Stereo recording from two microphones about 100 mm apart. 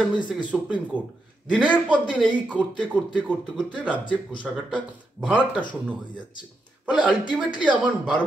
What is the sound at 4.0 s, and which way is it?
Speech, 55° left (ahead or behind).